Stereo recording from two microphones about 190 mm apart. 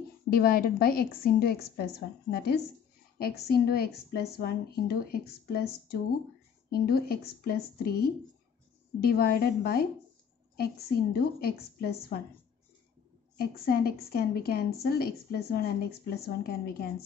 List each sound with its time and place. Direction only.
0.3 s a woman's voice: 50° left (ahead or behind)
13.4 s a woman's voice: 50° left (ahead or behind)